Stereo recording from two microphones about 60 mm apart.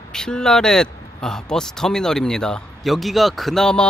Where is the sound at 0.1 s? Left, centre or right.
Centre.